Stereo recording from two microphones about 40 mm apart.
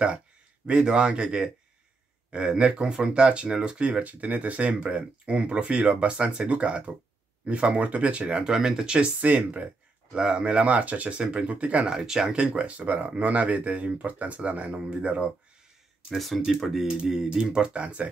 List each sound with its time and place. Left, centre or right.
0.7 s speech: right
4.0 s speech: right
9.2 s speech: right
10.1 s speech: right
11.1 s speech: right
11.9 s speech: centre; by 15.2 s right
16.2 s speech: centre
16.8 s speech: centre; by 18.1 s right